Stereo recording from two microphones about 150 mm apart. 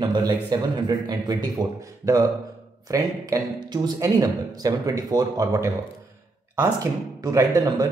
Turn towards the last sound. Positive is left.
turn(degrees=-25)  # may be behind; listen again after turning